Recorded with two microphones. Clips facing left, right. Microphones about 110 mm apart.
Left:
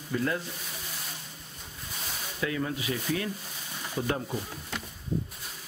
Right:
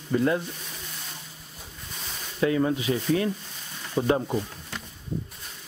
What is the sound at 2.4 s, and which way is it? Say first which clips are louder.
Speech: right 8 dB; 30° right (ahead or behind).